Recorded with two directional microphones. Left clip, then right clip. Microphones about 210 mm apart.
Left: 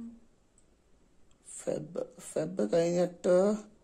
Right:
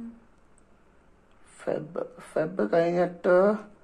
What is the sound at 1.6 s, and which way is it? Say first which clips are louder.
Speech: right 4 dB; 50° left (ahead or behind).